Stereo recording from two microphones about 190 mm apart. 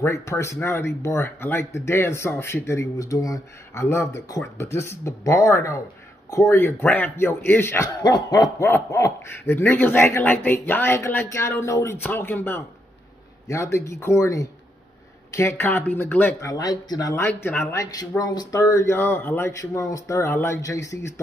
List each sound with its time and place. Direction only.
0.0 s a man's voice: 15° left (ahead or behind)